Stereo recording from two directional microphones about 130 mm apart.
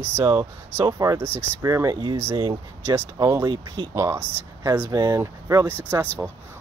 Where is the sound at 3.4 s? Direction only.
40° right (ahead or behind).